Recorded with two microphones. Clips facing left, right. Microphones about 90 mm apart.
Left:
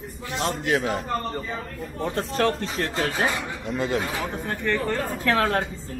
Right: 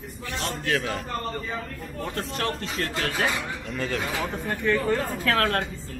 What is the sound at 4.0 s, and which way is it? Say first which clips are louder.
Speech: even; centre (ahead or behind).